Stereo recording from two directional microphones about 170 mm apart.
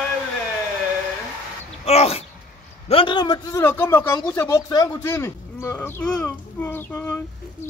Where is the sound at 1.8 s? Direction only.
35° left (ahead or behind).